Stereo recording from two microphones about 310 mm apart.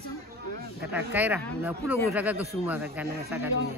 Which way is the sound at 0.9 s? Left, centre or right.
Centre.